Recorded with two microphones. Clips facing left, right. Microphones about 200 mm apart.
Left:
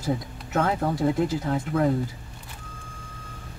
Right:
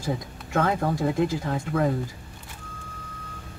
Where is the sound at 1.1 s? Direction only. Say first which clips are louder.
Even; 25° left (ahead or behind).